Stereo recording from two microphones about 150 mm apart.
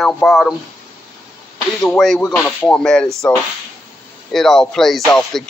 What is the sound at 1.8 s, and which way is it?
Speech, centre (ahead or behind).